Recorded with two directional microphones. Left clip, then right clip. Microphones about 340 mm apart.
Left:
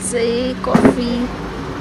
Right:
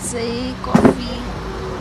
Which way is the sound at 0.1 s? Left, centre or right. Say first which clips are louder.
Left 7 dB; centre.